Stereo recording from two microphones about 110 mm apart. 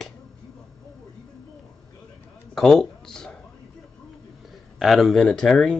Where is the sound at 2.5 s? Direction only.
5° left (ahead or behind).